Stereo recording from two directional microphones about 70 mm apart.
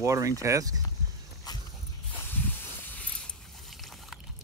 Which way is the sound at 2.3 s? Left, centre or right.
Left.